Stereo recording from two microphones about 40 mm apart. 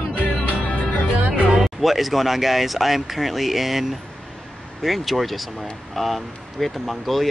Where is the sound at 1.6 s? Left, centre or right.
Centre.